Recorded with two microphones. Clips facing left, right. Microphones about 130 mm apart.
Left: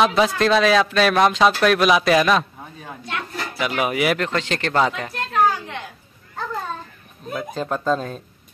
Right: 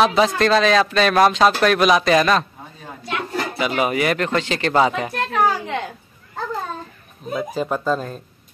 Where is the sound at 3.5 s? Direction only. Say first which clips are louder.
Right 1 dB; centre (ahead or behind).